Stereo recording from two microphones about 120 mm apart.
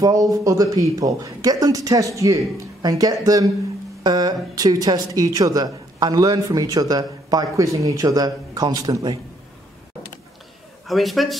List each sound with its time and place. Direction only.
0.0 s speech: 30° right (ahead or behind)
10.9 s a man's voice: centre (ahead or behind)